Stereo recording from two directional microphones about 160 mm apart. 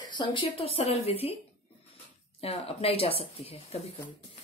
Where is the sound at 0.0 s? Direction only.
30° left (ahead or behind).